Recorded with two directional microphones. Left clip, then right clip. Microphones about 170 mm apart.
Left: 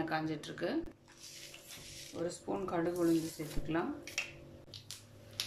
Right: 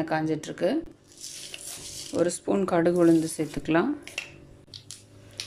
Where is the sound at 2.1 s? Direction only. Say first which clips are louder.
Right 14 dB; 55° right (ahead or behind).